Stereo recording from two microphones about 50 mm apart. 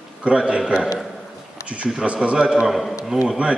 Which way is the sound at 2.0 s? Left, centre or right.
Right.